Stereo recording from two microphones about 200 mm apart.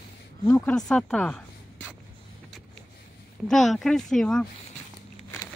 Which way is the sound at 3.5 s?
Centre (ahead or behind).